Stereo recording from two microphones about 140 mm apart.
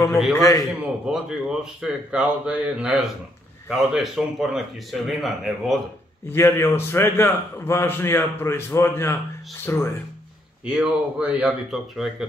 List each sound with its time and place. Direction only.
0.3 s a man's voice: 20° left (ahead or behind)
1.0 s a man's voice: 5° right (ahead or behind)
6.2 s a man's voice: 15° left (ahead or behind)
10.6 s speech: 10° right (ahead or behind)